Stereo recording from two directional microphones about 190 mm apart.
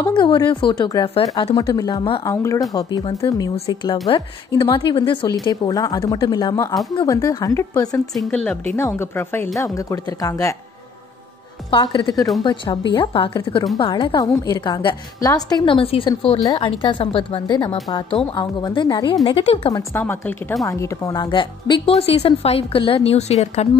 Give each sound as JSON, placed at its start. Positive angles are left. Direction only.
{"t": 0.2, "sound": "a woman's voice", "side_deg": 25}
{"t": 2.2, "sound": "a woman's voice", "side_deg": 15}
{"t": 8.1, "sound": "speech", "side_deg": 0}
{"t": 8.7, "sound": "speech", "side_deg": 15}
{"t": 11.7, "sound": "a woman's voice", "side_deg": 25}
{"t": 19.7, "sound": "a woman's voice", "side_deg": 10}